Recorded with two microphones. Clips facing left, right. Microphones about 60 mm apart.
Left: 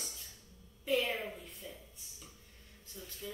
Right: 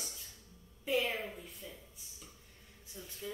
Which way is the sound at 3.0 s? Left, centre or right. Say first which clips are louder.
Even; centre.